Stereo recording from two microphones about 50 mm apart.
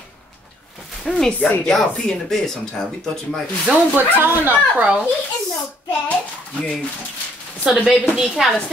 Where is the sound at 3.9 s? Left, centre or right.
Right.